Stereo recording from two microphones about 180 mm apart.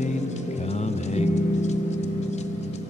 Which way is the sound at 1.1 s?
40° left (ahead or behind).